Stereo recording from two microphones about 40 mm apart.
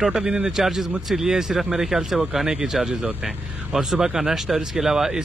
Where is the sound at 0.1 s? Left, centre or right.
Centre.